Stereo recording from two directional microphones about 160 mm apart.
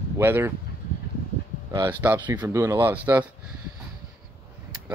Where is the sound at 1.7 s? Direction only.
25° right (ahead or behind).